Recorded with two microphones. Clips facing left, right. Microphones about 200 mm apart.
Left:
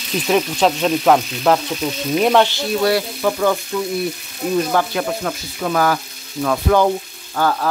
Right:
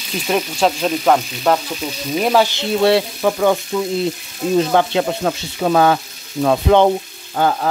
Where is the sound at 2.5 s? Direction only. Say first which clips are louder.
Right 3 dB; 25° right (ahead or behind).